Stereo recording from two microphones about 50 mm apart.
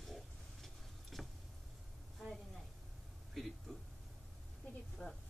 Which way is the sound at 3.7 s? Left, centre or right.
Centre.